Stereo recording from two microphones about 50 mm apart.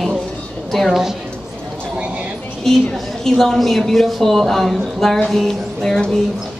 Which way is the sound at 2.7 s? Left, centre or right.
Centre.